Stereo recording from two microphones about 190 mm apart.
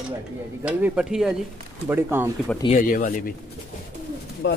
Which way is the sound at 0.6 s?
5° right (ahead or behind).